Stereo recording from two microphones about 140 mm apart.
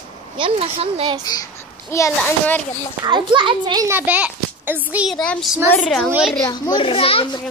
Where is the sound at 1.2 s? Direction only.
25° left (ahead or behind).